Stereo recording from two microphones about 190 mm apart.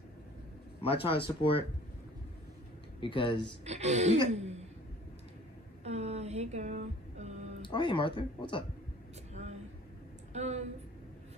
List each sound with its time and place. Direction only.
0.8 s speech: 30° left (ahead or behind)
3.0 s speech: 25° left (ahead or behind)
3.6 s a woman's voice: 35° right (ahead or behind)
5.9 s a sound: 35° right (ahead or behind)
7.6 s speech: 25° left (ahead or behind)
9.3 s vehicle: 35° right (ahead or behind)
10.3 s speech: 35° right (ahead or behind)